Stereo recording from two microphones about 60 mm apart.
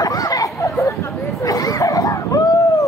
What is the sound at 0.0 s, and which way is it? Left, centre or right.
Chatter, left.